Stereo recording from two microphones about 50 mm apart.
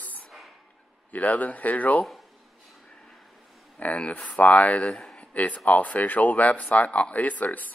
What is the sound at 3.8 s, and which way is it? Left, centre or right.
Speech, left.